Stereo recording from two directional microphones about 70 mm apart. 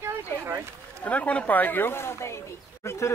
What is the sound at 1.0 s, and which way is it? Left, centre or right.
Speech, left.